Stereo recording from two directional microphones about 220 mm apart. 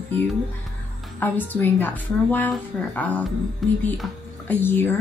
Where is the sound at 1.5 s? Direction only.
10° left (ahead or behind).